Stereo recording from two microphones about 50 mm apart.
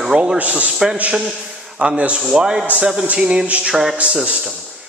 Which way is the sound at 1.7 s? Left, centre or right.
Right.